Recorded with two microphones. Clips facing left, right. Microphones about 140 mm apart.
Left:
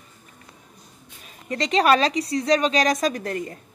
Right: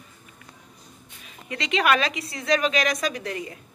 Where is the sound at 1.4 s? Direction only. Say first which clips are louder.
Left 4 dB; 40° left (ahead or behind).